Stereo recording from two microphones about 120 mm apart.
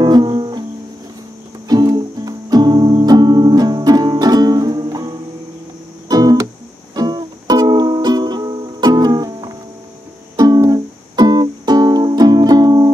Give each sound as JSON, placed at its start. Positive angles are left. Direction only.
{"t": 0.0, "sound": "music", "side_deg": -35}
{"t": 1.7, "sound": "music", "side_deg": -35}